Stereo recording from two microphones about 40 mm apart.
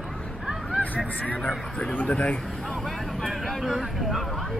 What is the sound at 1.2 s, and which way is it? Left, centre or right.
Speech, left.